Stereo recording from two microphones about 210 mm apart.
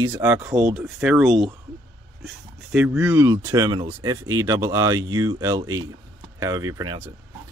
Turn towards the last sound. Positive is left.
turn(degrees=-15)  # may be behind; listen again after turning